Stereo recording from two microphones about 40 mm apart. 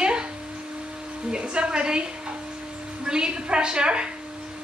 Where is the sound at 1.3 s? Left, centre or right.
Right.